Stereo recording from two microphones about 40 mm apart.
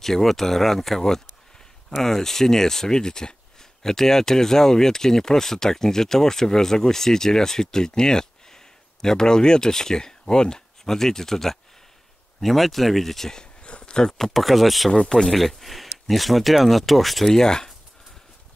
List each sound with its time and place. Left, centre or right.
0.0 s speech: centre
13.6 s a sound: left
14.1 s speech: centre
14.9 s speech: centre
15.3 s speech: centre
17.4 s speech: centre